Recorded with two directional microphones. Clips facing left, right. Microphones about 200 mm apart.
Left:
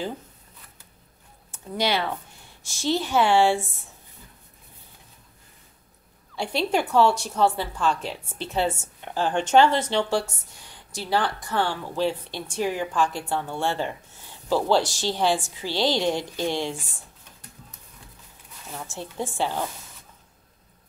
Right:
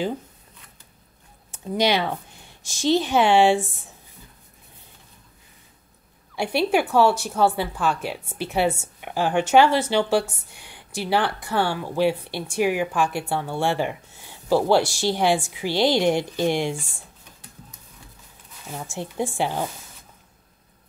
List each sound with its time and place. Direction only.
1.5 s speech: 15° right (ahead or behind)
6.3 s speech: 10° right (ahead or behind)
10.7 s a sound: 60° right (ahead or behind)
11.4 s speech: 10° right (ahead or behind)
18.8 s speech: 15° right (ahead or behind)